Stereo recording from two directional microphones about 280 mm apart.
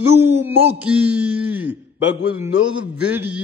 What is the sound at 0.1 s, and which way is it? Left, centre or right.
A man's voice, centre.